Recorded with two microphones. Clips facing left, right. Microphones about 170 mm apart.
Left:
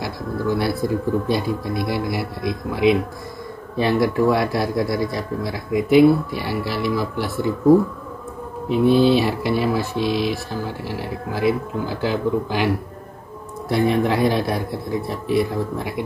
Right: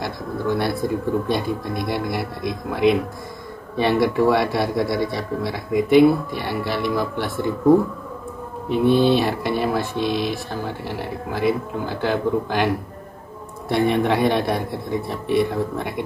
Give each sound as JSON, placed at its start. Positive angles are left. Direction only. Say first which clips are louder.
{"t": 0.6, "sound": "speech", "louder": "left 1 dB", "side_deg": 0}
{"t": 8.6, "sound": "speech", "louder": "left 1 dB", "side_deg": 0}
{"t": 12.1, "sound": "speech", "louder": "right 1 dB", "side_deg": -50}
{"t": 13.7, "sound": "speech", "louder": "even", "side_deg": 0}